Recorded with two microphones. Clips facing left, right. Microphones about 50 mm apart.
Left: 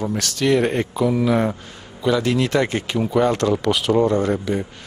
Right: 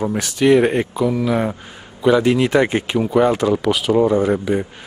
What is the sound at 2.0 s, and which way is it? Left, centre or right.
A man's voice, centre.